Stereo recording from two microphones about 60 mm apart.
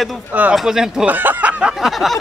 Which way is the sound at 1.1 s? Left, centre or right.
Right.